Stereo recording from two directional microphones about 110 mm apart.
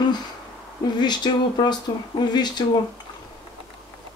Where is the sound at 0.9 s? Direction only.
40° left (ahead or behind).